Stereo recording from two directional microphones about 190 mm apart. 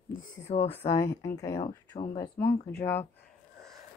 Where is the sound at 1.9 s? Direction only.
25° left (ahead or behind).